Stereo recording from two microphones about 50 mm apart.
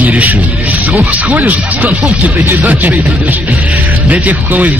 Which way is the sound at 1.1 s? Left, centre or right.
Right.